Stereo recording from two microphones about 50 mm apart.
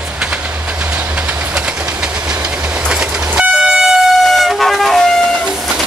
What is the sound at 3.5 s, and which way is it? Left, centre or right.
Train, centre.